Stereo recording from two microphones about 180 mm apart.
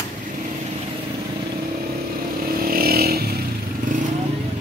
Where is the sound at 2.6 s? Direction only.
55° right (ahead or behind).